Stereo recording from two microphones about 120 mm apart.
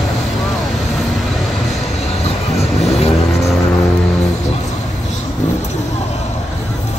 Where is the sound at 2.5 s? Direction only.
65° left (ahead or behind).